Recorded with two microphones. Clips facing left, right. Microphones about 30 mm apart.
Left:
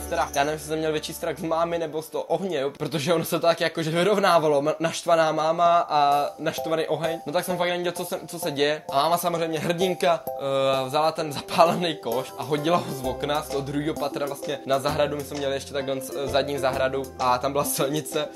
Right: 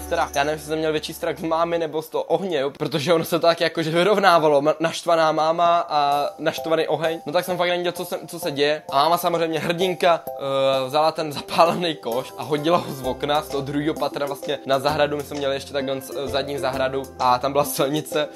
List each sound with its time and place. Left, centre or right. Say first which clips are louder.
0.1 s speech: right 3 dB; right
6.4 s speech: right 4 dB; right
15.1 s speech: right 3 dB; centre